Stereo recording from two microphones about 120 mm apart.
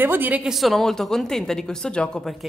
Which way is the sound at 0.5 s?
Centre (ahead or behind).